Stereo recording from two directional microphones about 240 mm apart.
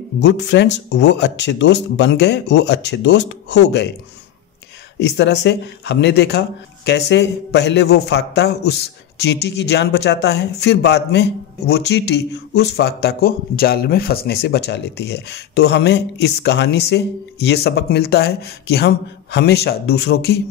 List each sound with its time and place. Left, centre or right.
0.2 s speech: left
4.9 s speech: left